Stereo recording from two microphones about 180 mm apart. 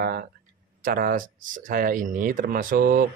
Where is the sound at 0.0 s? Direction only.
60° right (ahead or behind).